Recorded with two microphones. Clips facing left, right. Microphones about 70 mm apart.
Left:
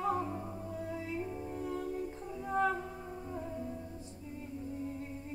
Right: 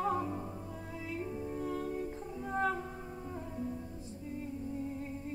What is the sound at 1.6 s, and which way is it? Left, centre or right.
Music, right.